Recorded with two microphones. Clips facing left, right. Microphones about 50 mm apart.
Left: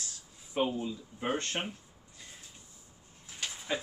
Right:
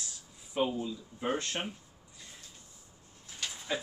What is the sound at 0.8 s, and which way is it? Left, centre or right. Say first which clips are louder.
Speech: even; left.